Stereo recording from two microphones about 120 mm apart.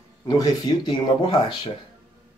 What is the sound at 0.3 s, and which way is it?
Speech, 35° left (ahead or behind).